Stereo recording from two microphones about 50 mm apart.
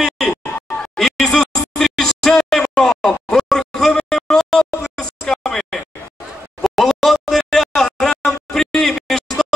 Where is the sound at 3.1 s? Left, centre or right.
Centre.